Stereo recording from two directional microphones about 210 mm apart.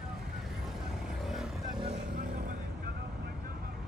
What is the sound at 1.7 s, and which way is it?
Vehicle, 25° right (ahead or behind).